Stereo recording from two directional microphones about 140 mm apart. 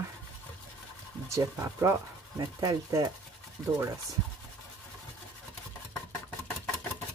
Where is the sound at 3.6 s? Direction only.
5° left (ahead or behind).